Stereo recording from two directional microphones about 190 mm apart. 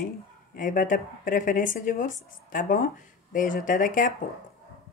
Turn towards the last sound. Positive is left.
turn(degrees=45)  # may be behind; listen again after turning